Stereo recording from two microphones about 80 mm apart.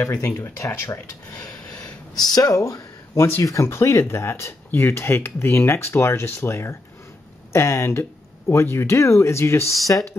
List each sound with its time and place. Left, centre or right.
0.2 s speech: left
2.1 s speech: left